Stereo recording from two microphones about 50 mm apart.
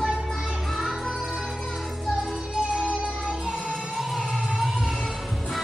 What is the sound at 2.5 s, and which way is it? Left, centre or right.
Music, centre.